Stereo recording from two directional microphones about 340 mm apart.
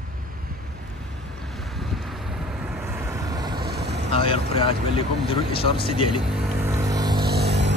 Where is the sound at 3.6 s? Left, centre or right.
Right.